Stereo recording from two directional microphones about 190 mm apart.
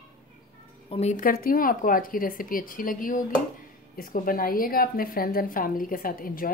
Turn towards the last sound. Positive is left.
turn(degrees=50)  # may be behind; listen again after turning